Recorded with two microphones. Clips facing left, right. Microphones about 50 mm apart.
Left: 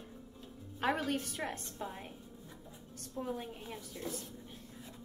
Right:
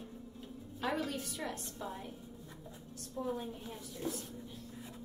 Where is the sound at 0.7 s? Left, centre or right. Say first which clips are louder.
Left 3 dB; left.